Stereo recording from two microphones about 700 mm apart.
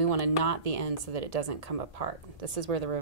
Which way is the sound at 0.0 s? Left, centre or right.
Right.